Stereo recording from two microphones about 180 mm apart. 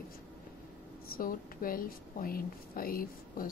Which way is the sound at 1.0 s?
50° left (ahead or behind).